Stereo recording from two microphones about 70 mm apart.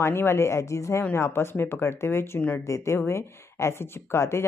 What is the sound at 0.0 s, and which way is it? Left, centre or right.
Speech, left.